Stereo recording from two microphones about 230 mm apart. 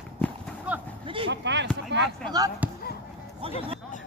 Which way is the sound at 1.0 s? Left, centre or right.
Right.